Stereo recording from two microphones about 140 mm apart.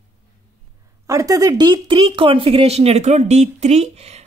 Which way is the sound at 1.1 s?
25° right (ahead or behind).